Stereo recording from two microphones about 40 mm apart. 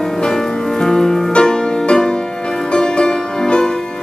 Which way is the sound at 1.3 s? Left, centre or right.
Left.